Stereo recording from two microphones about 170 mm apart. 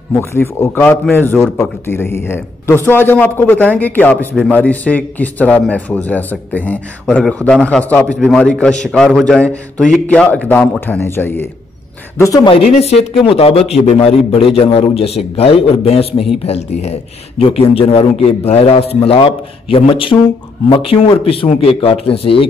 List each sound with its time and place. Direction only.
0.1 s a man's voice: 15° left (ahead or behind)
12.7 s a man's voice: 35° left (ahead or behind)